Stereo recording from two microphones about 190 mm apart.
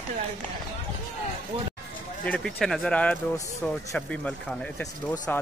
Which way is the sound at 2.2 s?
5° left (ahead or behind).